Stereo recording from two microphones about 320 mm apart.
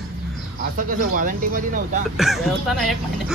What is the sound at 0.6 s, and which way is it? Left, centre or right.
Speech, right.